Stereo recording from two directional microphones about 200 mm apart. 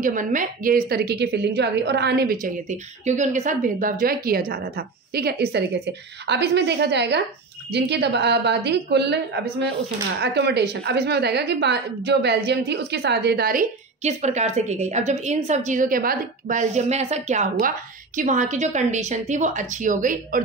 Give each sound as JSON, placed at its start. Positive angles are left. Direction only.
{"t": 0.0, "sound": "a woman's voice", "side_deg": -40}
{"t": 2.4, "sound": "a woman's voice", "side_deg": -40}